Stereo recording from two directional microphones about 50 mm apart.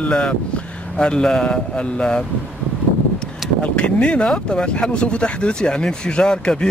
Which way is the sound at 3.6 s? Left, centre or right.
Left.